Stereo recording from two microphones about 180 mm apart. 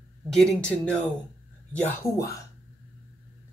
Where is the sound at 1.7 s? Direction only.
15° left (ahead or behind).